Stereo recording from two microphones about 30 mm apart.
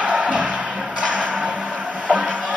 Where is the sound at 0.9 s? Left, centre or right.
Right.